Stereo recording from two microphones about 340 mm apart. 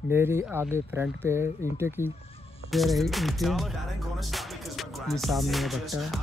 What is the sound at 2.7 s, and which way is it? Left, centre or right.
Music, centre.